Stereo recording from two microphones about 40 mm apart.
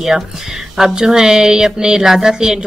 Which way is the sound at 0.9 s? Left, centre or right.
Centre.